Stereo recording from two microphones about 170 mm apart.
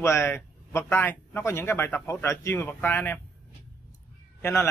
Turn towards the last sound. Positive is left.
turn(degrees=15)  # may be behind; listen again after turning